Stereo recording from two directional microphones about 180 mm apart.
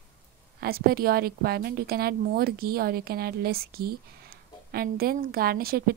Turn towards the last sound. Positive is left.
turn(degrees=-55)  # may be behind; listen again after turning